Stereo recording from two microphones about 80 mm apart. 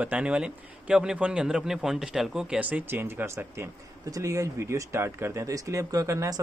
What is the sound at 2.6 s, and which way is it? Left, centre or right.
Speech, right.